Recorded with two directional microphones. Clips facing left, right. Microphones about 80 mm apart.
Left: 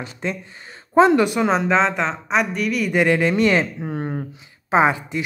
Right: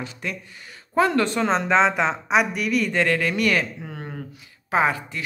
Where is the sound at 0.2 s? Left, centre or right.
Left; by 2.9 s centre.